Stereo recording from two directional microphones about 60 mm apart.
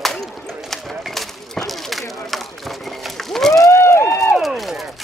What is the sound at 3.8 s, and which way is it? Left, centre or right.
Run, left.